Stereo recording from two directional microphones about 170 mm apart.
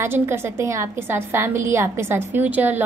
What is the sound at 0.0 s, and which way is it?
A woman's voice, 15° right (ahead or behind).